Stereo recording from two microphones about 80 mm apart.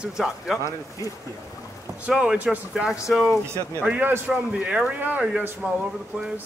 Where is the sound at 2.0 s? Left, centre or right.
Centre.